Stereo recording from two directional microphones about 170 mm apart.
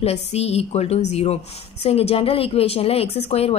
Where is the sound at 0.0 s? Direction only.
40° left (ahead or behind).